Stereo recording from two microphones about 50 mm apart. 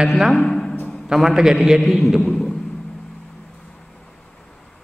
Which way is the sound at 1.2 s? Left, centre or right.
Centre.